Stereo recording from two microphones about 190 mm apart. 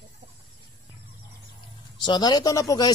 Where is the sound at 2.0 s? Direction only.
25° left (ahead or behind).